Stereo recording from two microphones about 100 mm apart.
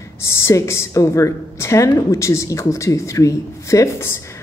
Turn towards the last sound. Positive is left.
turn(degrees=30)  # may be behind; listen again after turning